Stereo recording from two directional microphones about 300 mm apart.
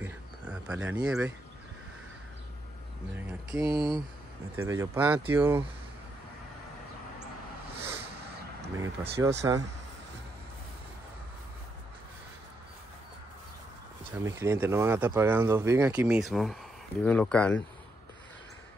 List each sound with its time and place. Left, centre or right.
0.0 s a sound: centre
3.5 s speech: centre
8.7 s speech: centre
14.2 s speech: centre